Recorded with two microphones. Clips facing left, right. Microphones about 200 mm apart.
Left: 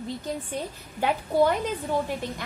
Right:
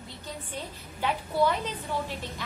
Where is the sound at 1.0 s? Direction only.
45° left (ahead or behind).